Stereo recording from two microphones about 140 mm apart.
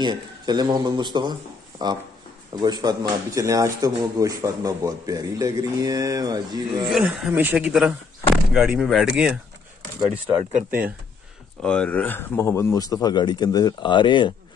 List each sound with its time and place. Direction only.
0.0 s speech: 30° right (ahead or behind)
6.9 s speech: 5° right (ahead or behind)
11.6 s speech: 5° left (ahead or behind); by 14.3 s 35° left (ahead or behind)